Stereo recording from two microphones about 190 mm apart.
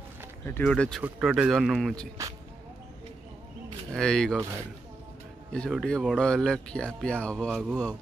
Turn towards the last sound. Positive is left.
turn(degrees=0)  # may be behind; listen again after turning